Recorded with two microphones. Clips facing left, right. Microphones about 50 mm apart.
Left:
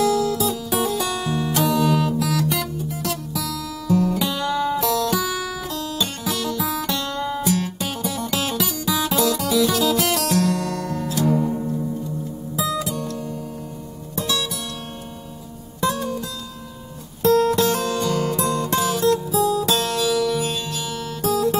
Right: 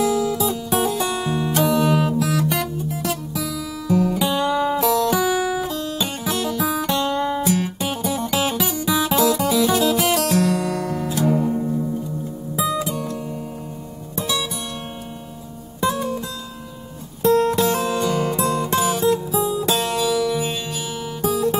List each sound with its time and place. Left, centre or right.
0.0 s music: centre
14.1 s music: centre
15.8 s music: centre
17.2 s music: centre